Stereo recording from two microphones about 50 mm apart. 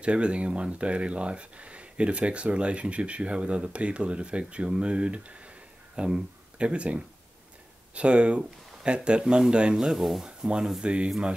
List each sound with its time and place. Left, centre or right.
0.0 s speech: right; by 10.2 s centre
10.2 s speech: centre